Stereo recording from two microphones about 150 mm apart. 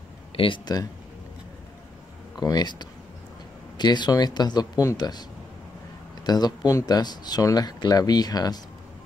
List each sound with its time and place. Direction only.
0.4 s speech: 30° left (ahead or behind)
2.4 s speech: 25° left (ahead or behind)
6.2 s speech: 25° left (ahead or behind)